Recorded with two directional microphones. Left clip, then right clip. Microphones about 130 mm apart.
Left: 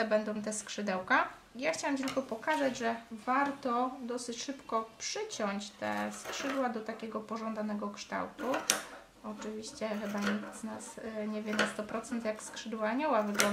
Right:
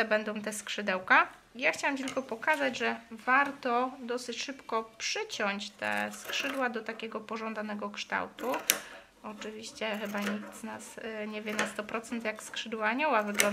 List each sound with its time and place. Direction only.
0.0 s speech: 20° right (ahead or behind)